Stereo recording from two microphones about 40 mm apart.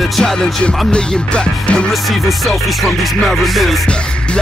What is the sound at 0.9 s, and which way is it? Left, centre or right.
Music, left.